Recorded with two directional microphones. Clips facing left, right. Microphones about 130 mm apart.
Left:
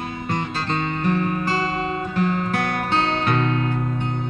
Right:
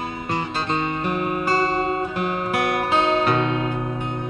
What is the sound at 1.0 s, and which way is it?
Music, 10° right (ahead or behind).